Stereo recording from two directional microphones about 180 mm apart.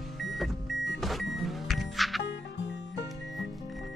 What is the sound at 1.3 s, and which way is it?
Music, centre (ahead or behind).